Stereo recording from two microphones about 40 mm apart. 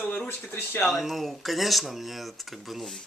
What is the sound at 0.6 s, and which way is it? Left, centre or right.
Speech, left.